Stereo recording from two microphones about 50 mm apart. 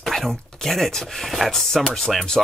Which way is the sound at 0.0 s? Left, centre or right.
Centre.